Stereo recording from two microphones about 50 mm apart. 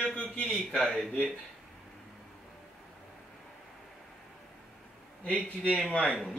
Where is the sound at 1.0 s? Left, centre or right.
Centre.